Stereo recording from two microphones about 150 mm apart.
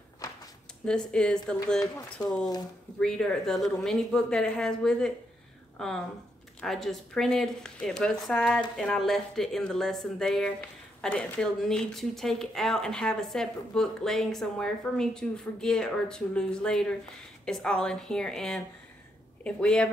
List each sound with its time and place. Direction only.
1.1 s speech: 5° left (ahead or behind)
2.2 s speech: 25° left (ahead or behind)
3.0 s speech: 5° left (ahead or behind)
6.6 s speech: centre (ahead or behind)